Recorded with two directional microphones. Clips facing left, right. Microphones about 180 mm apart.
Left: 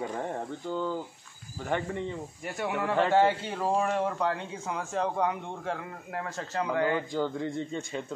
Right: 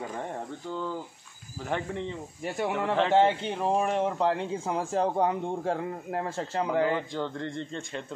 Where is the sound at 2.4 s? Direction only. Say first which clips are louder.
Right 3 dB; 25° right (ahead or behind).